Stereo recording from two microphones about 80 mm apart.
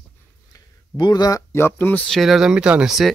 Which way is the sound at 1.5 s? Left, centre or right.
Left.